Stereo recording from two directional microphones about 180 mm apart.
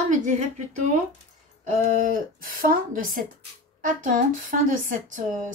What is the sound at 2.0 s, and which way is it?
Speech, 50° right (ahead or behind).